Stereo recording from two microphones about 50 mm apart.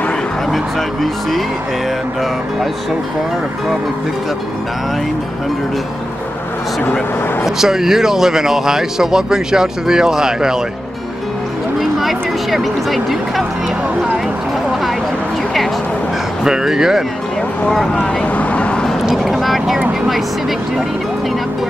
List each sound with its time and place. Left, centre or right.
0.5 s speech: centre
7.4 s speech: centre
11.8 s speech: centre
16.4 s speech: centre
18.2 s vehicle: left
19.1 s vehicle: centre